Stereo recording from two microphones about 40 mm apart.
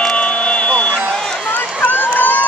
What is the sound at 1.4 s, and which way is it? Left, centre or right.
Run, left.